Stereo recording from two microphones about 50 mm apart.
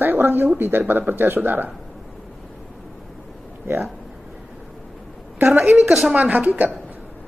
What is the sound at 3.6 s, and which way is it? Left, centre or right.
Speech, right.